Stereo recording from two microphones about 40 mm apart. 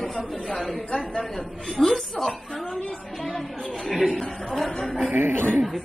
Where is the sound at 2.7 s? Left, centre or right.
Centre.